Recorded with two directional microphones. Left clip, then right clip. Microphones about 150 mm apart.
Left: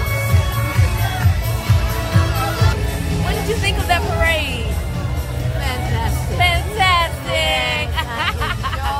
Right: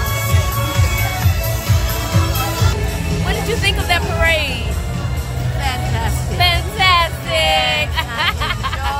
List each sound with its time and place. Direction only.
3.6 s music: 20° right (ahead or behind)
6.3 s music: 25° right (ahead or behind)
7.5 s hubbub: 25° right (ahead or behind)